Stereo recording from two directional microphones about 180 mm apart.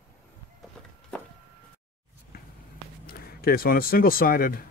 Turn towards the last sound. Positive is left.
turn(degrees=55)  # may be behind; listen again after turning